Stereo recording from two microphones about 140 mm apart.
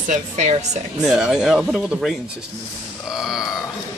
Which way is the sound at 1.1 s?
5° right (ahead or behind).